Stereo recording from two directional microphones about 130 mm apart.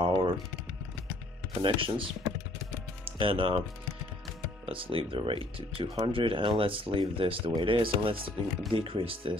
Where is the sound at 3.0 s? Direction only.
45° right (ahead or behind).